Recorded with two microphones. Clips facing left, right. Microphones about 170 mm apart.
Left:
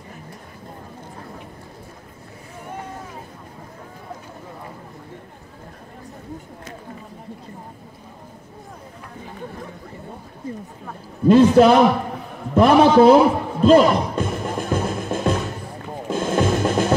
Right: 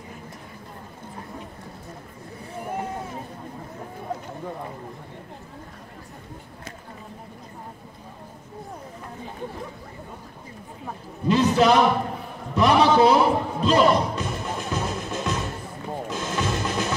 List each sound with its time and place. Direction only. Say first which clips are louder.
11.2 s a man's voice: left 7 dB; 50° left (ahead or behind)
13.7 s music: left 6 dB; 50° left (ahead or behind)